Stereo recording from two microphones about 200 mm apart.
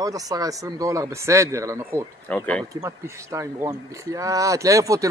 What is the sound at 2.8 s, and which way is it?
Speech, 15° right (ahead or behind).